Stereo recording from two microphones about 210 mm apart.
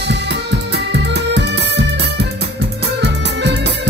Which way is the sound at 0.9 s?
55° right (ahead or behind).